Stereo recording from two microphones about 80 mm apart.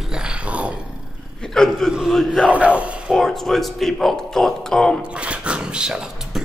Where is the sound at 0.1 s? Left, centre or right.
Centre.